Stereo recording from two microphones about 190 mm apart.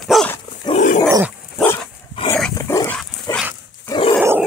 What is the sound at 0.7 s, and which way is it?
Dog, 35° left (ahead or behind).